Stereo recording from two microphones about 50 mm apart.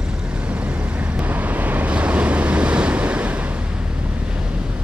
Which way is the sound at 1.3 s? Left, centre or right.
Right.